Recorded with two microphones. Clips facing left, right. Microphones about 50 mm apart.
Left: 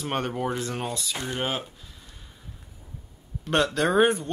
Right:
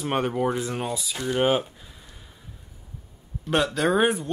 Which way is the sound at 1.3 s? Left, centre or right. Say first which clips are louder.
Right 9 dB; centre.